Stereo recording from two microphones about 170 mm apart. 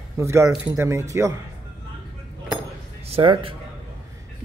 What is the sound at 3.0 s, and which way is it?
Speech, 35° right (ahead or behind).